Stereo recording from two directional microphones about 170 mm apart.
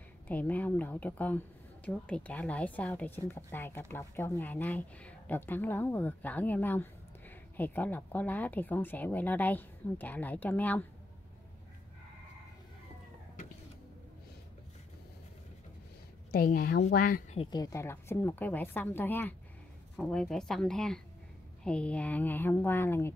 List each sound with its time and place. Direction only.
0.3 s a woman's voice: 10° left (ahead or behind)
16.3 s a woman's voice: 60° left (ahead or behind)
17.4 s a woman's voice: 25° left (ahead or behind)